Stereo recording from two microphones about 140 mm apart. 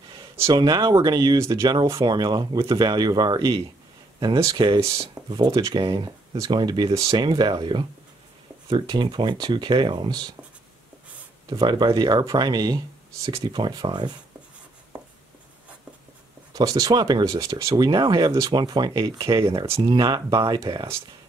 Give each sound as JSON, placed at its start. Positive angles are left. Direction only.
{"t": 0.6, "sound": "speech", "side_deg": -30}
{"t": 11.4, "sound": "speech", "side_deg": -30}
{"t": 16.5, "sound": "speech", "side_deg": -25}